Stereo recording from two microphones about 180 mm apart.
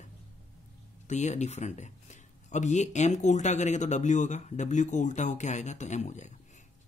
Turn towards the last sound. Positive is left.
turn(degrees=40)  # may be behind; listen again after turning